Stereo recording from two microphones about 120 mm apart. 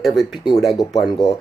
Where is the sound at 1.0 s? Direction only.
35° left (ahead or behind).